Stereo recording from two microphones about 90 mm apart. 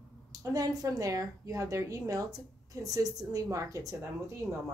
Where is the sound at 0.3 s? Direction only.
40° right (ahead or behind).